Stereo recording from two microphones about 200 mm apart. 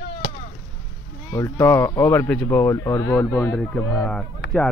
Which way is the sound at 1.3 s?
15° left (ahead or behind).